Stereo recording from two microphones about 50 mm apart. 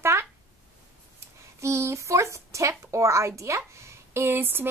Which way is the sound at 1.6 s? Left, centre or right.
Right.